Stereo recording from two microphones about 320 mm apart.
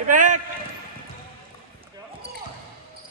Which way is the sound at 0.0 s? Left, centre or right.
Right.